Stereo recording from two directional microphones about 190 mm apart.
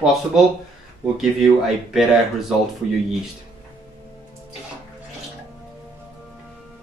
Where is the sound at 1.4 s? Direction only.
Centre (ahead or behind).